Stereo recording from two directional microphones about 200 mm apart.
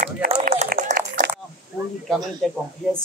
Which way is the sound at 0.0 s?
40° right (ahead or behind).